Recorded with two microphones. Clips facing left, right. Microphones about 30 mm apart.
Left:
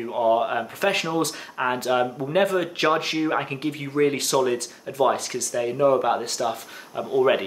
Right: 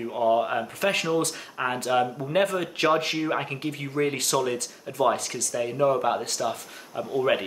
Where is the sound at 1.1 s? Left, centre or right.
Centre.